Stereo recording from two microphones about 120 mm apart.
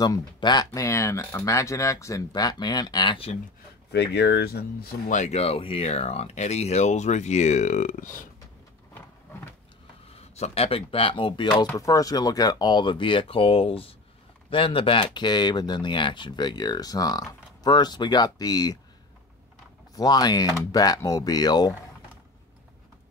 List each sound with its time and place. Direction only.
0.0 s speech: 35° left (ahead or behind)
0.7 s speech: 25° left (ahead or behind); by 3.3 s 45° left (ahead or behind)
5.1 s speech: 75° left (ahead or behind); by 8.2 s 90° left
8.9 s a sound: 15° left (ahead or behind)
10.1 s speech: 60° left (ahead or behind)
11.7 s speech: 30° left (ahead or behind)
20.0 s speech: 35° left (ahead or behind)